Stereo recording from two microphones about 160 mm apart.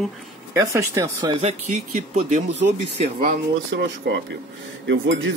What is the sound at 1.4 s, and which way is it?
Speech, 50° right (ahead or behind).